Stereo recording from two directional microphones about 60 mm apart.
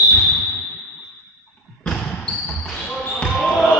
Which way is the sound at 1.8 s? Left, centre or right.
Centre.